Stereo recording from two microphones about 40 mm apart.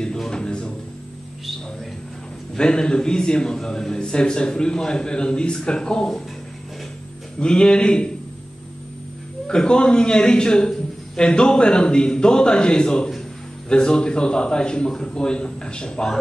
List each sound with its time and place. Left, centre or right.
0.3 s music: left
2.5 s a man's voice: left
7.3 s a man's voice: left
9.5 s a man's voice: left